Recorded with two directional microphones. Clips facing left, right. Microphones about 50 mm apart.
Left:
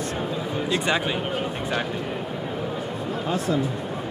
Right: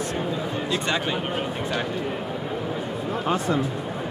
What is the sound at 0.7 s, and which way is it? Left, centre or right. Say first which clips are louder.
Speech: left 3 dB; centre.